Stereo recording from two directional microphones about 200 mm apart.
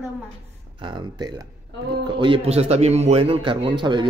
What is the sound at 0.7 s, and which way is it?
Speech, 25° right (ahead or behind).